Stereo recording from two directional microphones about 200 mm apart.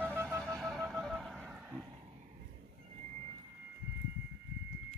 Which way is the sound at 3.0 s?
35° right (ahead or behind).